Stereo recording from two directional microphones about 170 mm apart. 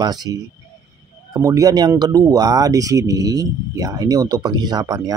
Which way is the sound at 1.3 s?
20° right (ahead or behind).